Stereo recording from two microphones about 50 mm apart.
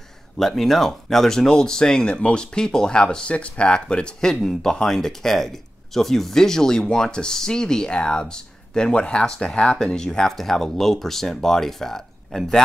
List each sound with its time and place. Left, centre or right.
0.4 s speech: centre